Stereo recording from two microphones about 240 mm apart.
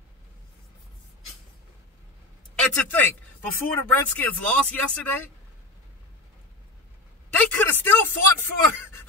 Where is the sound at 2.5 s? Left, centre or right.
Centre.